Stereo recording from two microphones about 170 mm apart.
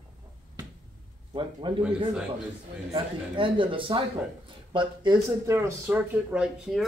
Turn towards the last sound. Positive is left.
turn(degrees=-5)  # may be behind; listen again after turning